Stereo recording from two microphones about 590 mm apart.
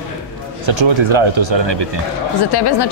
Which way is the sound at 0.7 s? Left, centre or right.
Right.